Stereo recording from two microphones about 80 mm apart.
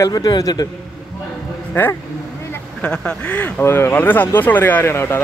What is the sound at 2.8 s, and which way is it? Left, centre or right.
Speech, centre.